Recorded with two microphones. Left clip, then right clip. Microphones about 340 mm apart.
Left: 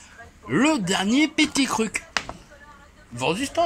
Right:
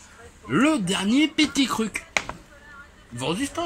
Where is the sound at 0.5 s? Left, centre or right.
Centre.